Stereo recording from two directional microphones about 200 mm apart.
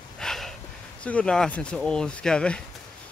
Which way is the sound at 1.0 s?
5° left (ahead or behind).